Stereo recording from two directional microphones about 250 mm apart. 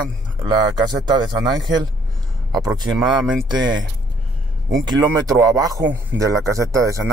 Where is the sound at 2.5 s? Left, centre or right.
Centre.